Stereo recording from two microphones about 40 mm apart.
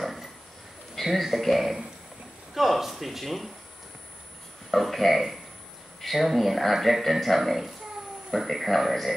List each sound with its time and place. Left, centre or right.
0.0 s a sound: centre
0.9 s speech: centre
4.6 s speech: centre